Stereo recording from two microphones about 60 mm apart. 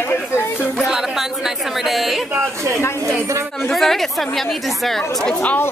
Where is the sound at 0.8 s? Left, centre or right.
Centre.